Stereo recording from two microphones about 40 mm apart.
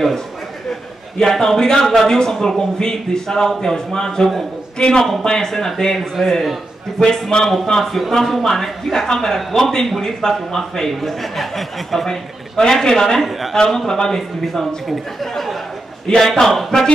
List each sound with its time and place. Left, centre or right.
1.1 s a man's voice: centre
5.9 s speech: centre
7.0 s a man's voice: centre
7.8 s a man's voice: centre